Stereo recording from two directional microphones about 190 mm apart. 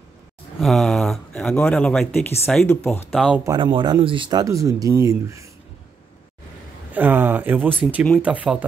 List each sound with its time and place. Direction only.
0.6 s speech: centre (ahead or behind)
3.1 s speech: centre (ahead or behind)
3.4 s speech: 25° right (ahead or behind)
6.9 s speech: 10° right (ahead or behind)